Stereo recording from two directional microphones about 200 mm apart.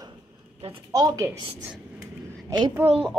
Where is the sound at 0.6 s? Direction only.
25° right (ahead or behind).